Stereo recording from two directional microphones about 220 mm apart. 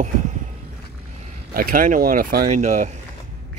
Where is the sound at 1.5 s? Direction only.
40° right (ahead or behind).